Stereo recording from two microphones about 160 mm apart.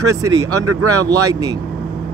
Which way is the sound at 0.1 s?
20° right (ahead or behind).